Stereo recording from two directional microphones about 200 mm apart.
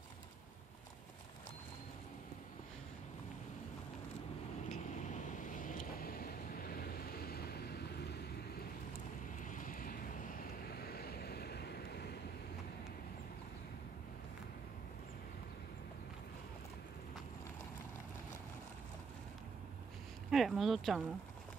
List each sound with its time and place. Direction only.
4.6 s vehicle: 40° left (ahead or behind); by 8.3 s 55° left (ahead or behind)
9.4 s vehicle: 40° left (ahead or behind)
20.2 s speech: centre (ahead or behind)